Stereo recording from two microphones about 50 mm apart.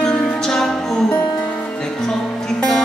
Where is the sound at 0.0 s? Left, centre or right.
Centre.